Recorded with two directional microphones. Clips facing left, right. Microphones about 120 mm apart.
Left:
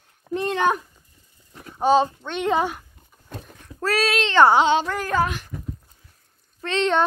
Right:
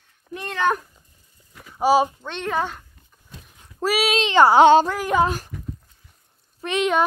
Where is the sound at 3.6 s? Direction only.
15° right (ahead or behind).